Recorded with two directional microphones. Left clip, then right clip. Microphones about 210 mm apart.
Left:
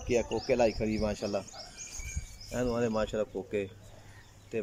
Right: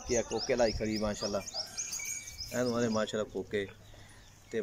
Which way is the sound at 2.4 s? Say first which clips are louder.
Left 1 dB; 10° left (ahead or behind).